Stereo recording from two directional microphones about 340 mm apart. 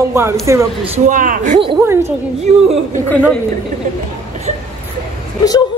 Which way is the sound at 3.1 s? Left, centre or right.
Centre.